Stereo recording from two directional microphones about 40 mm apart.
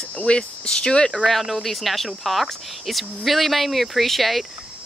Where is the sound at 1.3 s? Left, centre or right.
Centre.